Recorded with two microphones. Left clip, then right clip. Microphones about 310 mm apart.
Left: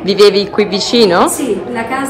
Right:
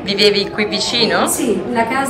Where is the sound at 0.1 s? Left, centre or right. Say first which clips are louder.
Left 5 dB; centre.